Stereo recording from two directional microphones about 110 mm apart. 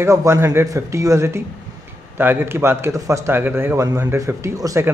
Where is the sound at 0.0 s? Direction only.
25° right (ahead or behind).